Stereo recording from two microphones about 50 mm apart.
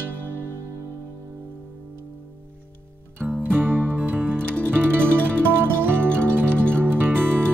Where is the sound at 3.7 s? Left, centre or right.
Right.